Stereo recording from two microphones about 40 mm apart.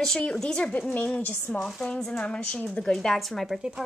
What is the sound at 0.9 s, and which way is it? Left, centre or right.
Speech, left.